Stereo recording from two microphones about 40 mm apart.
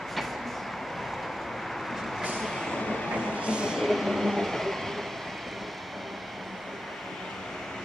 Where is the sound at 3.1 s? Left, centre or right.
Right.